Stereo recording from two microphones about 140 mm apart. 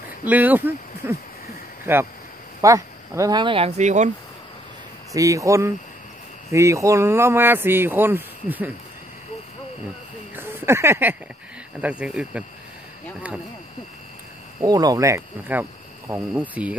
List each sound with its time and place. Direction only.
0.2 s speech: 10° right (ahead or behind); by 4.1 s 55° right (ahead or behind)
5.1 s speech: 25° right (ahead or behind)
10.3 s a sound: 15° right (ahead or behind)
11.8 s speech: 10° right (ahead or behind)
14.6 s speech: 25° right (ahead or behind); by 16.7 s 10° right (ahead or behind)